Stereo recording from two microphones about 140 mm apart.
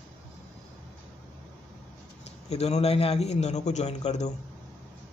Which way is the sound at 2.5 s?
50° left (ahead or behind).